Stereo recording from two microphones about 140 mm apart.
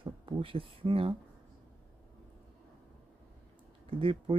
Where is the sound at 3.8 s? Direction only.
40° right (ahead or behind).